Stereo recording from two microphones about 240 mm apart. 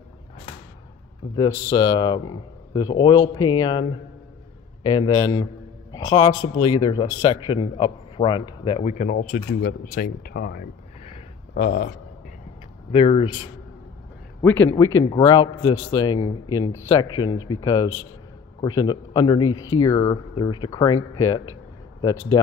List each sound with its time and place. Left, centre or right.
1.3 s speech: centre
4.8 s a man's voice: centre; by 11.9 s left
12.9 s a man's voice: left
14.4 s a man's voice: centre
22.0 s speech: centre